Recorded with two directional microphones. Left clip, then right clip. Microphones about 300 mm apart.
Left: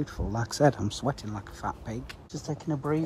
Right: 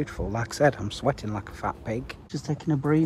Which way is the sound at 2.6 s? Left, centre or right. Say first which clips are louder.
Right 5 dB; right.